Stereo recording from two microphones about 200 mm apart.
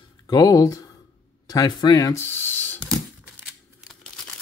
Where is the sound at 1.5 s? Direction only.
20° left (ahead or behind).